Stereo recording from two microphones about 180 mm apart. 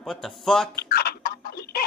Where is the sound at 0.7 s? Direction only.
60° left (ahead or behind).